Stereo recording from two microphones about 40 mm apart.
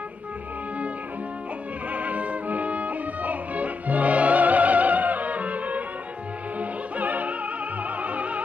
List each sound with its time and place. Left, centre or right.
1.9 s music: right